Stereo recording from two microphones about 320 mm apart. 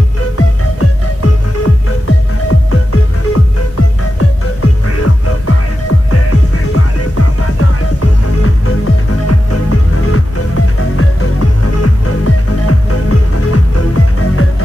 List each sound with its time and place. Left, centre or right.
0.4 s music: left